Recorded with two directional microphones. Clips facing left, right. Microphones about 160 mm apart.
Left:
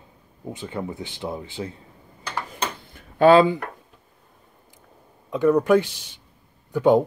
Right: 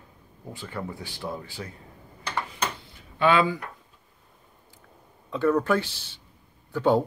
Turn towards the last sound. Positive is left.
turn(degrees=15)  # may be behind; listen again after turning